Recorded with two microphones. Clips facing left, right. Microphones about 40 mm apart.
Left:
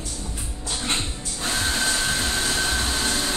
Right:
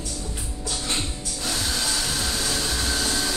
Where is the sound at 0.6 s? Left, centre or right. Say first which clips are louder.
Left 2 dB; left.